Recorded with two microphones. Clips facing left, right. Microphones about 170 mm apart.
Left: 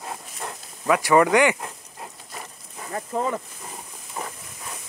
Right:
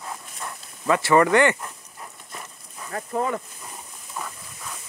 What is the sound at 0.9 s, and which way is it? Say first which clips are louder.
Speech: even; 15° left (ahead or behind).